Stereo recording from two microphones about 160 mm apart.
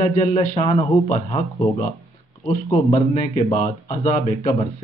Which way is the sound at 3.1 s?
45° left (ahead or behind).